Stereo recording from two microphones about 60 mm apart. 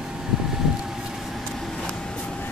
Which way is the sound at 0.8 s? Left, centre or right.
Centre.